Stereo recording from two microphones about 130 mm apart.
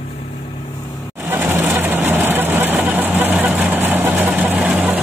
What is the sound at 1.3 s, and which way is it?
Vehicle, 15° right (ahead or behind).